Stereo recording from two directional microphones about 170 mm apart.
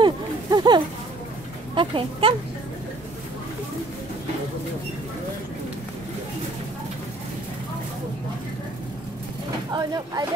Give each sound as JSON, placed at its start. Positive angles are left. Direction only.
{"t": 0.0, "sound": "a sound", "side_deg": -25}
{"t": 1.8, "sound": "speech", "side_deg": -30}
{"t": 9.7, "sound": "speech", "side_deg": -25}